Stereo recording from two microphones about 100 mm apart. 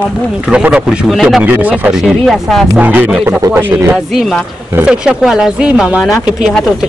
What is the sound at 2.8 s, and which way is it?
Speech, 15° right (ahead or behind).